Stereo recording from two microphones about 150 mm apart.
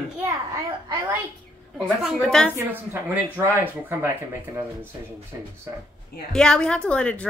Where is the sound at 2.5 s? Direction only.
15° right (ahead or behind).